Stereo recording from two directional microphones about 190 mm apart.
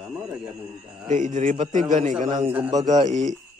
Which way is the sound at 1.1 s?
40° right (ahead or behind).